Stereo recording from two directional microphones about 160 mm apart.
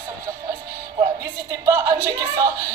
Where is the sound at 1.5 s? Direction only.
20° right (ahead or behind).